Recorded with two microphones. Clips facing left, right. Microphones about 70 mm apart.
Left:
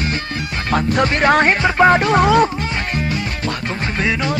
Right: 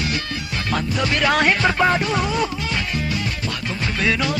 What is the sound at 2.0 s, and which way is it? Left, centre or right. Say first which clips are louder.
Music: left 8 dB; left.